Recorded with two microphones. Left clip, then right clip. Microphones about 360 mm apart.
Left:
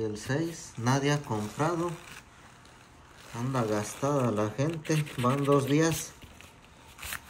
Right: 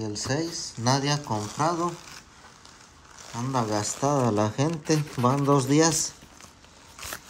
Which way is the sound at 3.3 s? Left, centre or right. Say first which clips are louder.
Right 3 dB; centre.